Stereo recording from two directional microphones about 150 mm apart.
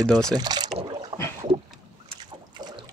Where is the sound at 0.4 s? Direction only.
25° right (ahead or behind).